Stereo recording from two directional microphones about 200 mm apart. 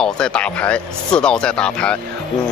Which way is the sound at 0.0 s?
5° left (ahead or behind).